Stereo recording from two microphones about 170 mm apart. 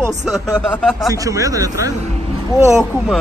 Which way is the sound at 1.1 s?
20° right (ahead or behind).